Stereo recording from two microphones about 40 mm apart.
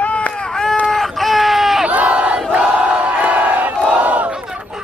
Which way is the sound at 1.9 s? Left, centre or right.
Right.